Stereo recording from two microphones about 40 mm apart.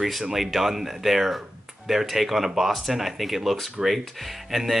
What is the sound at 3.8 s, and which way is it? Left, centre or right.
Speech, centre.